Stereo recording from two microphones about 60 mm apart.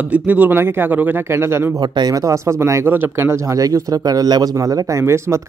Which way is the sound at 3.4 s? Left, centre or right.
Right.